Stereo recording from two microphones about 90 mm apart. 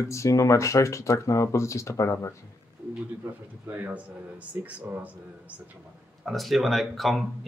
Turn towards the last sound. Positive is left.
turn(degrees=0)  # may be behind; listen again after turning